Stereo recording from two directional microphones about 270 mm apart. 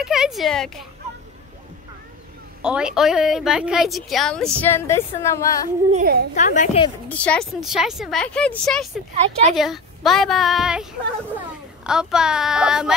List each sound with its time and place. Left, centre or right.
0.0 s a woman's voice: centre
2.6 s a woman's voice: centre
5.9 s a woman's voice: right
6.3 s a woman's voice: left
7.1 s a woman's voice: centre
9.1 s a woman's voice: right
9.6 s a woman's voice: centre